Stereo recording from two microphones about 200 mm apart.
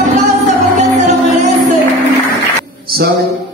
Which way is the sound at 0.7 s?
35° right (ahead or behind).